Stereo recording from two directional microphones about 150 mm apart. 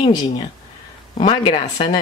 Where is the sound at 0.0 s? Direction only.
30° left (ahead or behind).